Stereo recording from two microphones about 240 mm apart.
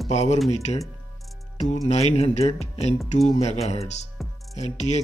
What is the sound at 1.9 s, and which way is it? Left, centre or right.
Speech, left.